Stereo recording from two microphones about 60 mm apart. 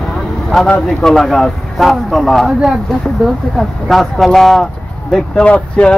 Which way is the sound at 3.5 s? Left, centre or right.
Centre.